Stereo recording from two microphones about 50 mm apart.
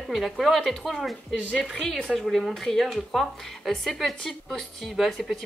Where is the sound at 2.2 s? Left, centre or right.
Centre.